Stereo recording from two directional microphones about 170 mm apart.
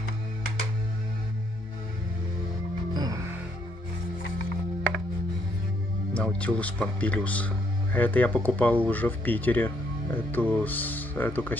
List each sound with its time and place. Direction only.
2.9 s music: 25° right (ahead or behind)
6.1 s speech: 5° left (ahead or behind)